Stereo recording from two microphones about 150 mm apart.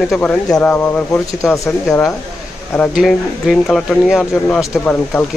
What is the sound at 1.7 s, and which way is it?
Speech, 5° left (ahead or behind).